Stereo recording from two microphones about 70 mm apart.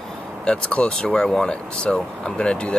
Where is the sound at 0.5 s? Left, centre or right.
Centre.